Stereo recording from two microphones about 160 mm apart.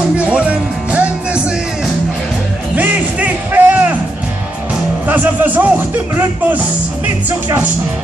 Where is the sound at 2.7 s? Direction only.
10° right (ahead or behind).